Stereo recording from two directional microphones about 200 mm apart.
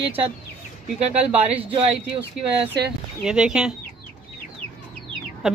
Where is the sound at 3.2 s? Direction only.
5° right (ahead or behind).